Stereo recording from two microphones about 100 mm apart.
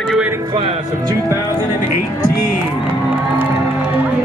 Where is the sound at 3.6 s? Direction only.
10° right (ahead or behind).